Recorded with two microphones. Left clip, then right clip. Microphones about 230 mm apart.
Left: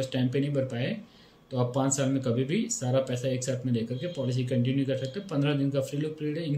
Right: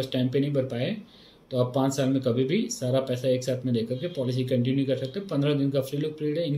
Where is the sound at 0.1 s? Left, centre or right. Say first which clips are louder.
Right 3 dB; centre.